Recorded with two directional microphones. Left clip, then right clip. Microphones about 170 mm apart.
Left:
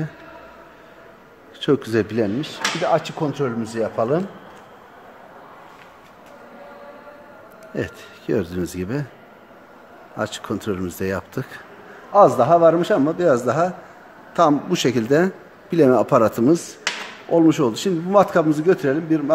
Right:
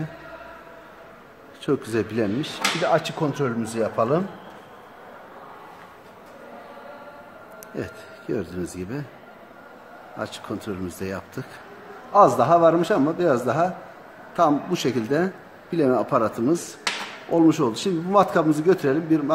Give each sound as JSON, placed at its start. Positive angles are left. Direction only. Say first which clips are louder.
{"t": 1.6, "sound": "speech", "louder": "left 5 dB", "side_deg": 40}
{"t": 7.7, "sound": "speech", "louder": "left 5 dB", "side_deg": 50}
{"t": 10.1, "sound": "speech", "louder": "left 5 dB", "side_deg": 50}
{"t": 12.1, "sound": "a man's voice", "louder": "left 2 dB", "side_deg": 30}
{"t": 17.3, "sound": "a man's voice", "louder": "left 3 dB", "side_deg": 35}